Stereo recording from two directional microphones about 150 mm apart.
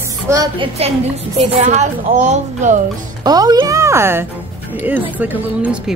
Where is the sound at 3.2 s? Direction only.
25° right (ahead or behind).